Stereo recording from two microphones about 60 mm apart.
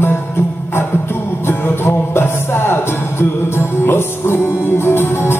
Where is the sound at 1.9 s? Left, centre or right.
Left.